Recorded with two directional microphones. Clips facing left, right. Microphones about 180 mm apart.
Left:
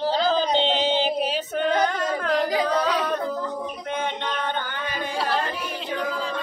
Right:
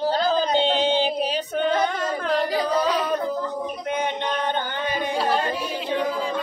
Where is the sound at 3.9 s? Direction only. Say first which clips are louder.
Right 2 dB; 15° right (ahead or behind).